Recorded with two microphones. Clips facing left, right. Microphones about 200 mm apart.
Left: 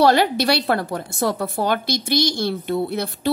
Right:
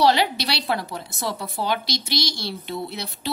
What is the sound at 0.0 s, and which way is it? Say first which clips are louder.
A woman's voice: left 4 dB; 50° left (ahead or behind).